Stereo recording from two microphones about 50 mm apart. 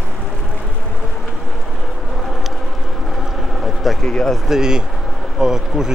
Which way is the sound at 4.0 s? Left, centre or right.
Centre.